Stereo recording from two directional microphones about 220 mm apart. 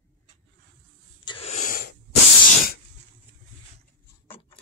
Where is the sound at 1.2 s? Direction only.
25° left (ahead or behind); by 1.9 s 40° left (ahead or behind).